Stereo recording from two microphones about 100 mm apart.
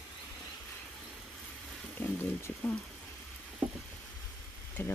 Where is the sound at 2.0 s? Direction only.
20° left (ahead or behind).